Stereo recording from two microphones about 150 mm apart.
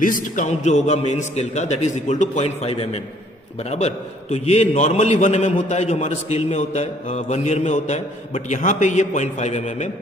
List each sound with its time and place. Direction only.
0.0 s a man's voice: 60° left (ahead or behind)